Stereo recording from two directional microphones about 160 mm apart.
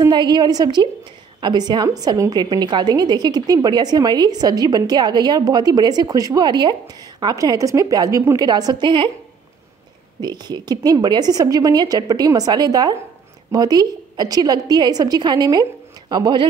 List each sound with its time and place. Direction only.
0.0 s a woman's voice: 25° right (ahead or behind)
10.2 s a woman's voice: 25° right (ahead or behind)